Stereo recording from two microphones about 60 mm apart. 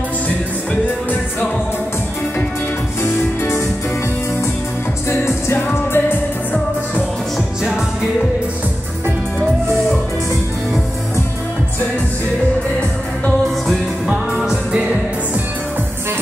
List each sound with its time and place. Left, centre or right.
3.0 s music: left
5.2 s music: left
14.0 s music: centre